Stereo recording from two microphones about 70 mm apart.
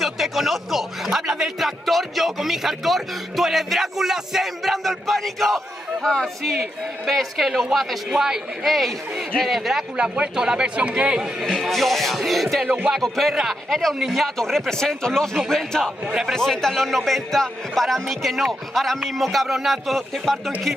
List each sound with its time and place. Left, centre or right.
0.0 s a sound: centre
7.1 s a man's voice: centre
11.4 s a man's voice: centre
12.6 s music: right
12.9 s a man's voice: centre